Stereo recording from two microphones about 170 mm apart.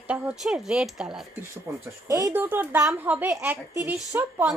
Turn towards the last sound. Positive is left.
turn(degrees=-15)  # may be behind; listen again after turning